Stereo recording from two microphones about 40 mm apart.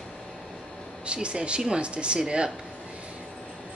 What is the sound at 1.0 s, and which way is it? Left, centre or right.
Speech, right.